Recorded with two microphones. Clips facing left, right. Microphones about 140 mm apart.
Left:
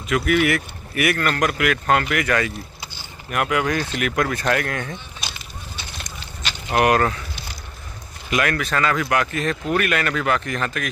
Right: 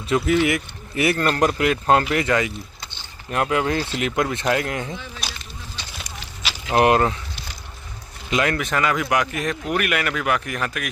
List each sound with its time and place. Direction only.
0.0 s speech: 25° right (ahead or behind)
5.9 s a sound: 5° right (ahead or behind)
6.7 s speech: 25° right (ahead or behind)
8.3 s speech: 20° right (ahead or behind)